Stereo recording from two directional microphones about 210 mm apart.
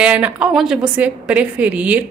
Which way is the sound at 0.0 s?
5° right (ahead or behind).